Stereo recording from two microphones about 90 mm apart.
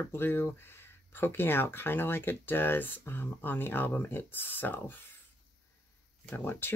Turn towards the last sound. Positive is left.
turn(degrees=20)  # may be behind; listen again after turning